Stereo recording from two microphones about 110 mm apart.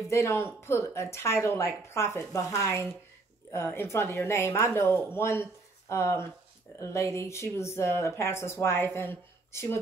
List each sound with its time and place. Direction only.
0.1 s speech: 25° left (ahead or behind)